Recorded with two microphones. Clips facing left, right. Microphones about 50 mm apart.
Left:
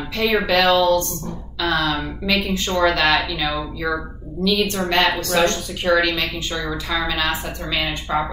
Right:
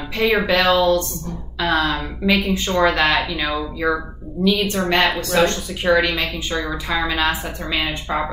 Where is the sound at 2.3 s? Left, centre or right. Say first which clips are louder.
Right 3 dB; centre.